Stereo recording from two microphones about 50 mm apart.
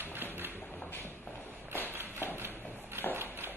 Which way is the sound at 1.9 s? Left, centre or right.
Right.